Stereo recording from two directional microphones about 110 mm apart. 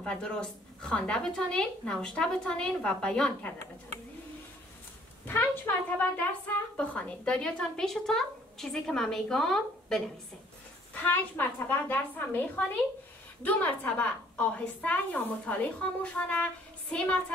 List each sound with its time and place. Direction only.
0.0 s a woman's voice: 5° left (ahead or behind)
5.2 s a woman's voice: 15° left (ahead or behind)
11.0 s a woman's voice: 20° left (ahead or behind)